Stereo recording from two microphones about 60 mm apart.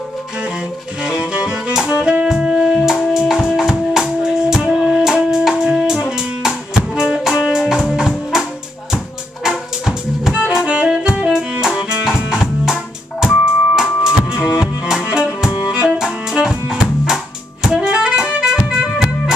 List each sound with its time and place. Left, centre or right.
1.0 s music: centre
15.7 s music: right
16.0 s music: centre